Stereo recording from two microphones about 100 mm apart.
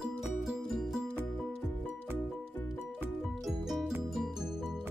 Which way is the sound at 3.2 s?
Centre (ahead or behind).